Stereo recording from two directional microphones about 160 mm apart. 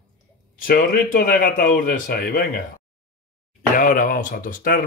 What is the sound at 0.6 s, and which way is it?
Speech, 65° left (ahead or behind).